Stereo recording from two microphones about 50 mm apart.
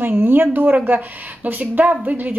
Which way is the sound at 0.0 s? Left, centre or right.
Right.